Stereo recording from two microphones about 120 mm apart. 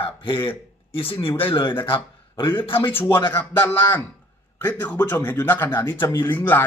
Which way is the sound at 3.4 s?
15° left (ahead or behind).